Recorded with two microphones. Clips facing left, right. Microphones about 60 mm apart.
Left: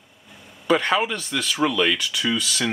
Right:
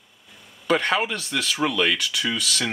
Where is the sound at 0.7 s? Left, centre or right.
Centre.